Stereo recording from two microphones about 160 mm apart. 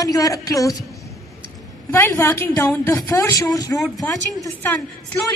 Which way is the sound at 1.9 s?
20° left (ahead or behind).